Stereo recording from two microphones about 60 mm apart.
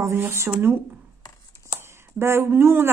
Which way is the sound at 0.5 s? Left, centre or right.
Right.